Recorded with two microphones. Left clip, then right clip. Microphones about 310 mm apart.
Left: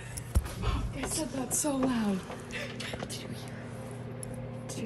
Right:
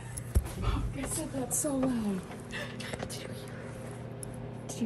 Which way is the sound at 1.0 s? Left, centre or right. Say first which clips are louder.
Left 3 dB; centre.